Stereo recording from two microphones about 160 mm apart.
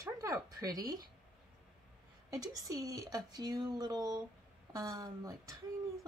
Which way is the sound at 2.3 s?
20° right (ahead or behind).